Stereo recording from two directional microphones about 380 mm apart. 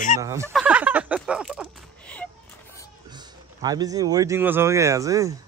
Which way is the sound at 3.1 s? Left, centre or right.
Centre.